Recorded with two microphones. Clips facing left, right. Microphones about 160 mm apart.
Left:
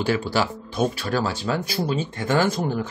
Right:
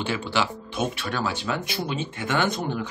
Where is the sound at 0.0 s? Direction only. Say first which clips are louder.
Left 4 dB; 40° left (ahead or behind).